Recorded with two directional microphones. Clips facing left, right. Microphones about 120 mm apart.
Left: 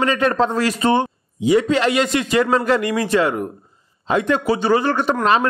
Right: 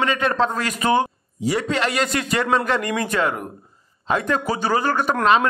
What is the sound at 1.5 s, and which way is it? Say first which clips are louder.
Speech: left 6 dB; 35° right (ahead or behind).